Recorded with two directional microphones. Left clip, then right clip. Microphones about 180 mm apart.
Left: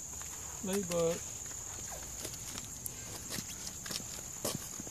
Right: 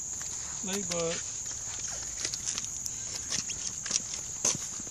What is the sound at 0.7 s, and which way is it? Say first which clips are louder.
Speech: even; 5° left (ahead or behind).